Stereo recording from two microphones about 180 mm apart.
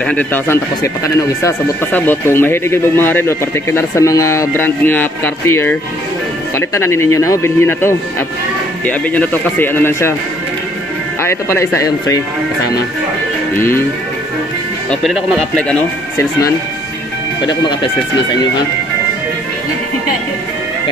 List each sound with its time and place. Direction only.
0.0 s speech: 10° left (ahead or behind)
11.2 s speech: 15° left (ahead or behind)
13.6 s speech: 15° left (ahead or behind)
14.9 s speech: centre (ahead or behind)
17.4 s speech: 25° left (ahead or behind)